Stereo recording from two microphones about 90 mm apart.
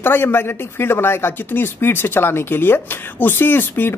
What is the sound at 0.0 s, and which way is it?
Speech, 25° left (ahead or behind).